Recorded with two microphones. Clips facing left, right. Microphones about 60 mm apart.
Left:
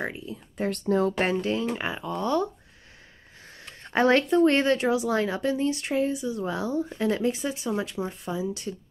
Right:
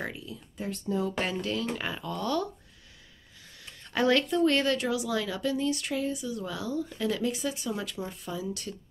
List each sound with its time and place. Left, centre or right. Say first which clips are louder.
0.0 s a sound: left 4 dB; left
0.6 s speech: left 7 dB; left
1.2 s speech: left 5 dB; left
3.6 s speech: left 4 dB; left